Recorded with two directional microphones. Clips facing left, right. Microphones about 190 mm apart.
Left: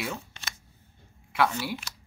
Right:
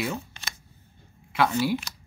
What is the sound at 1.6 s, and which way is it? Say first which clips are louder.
Speech: right 8 dB; centre (ahead or behind).